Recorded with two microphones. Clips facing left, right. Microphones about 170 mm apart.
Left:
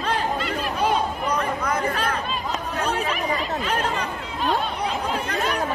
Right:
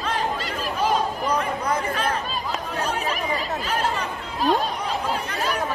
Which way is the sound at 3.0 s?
35° right (ahead or behind).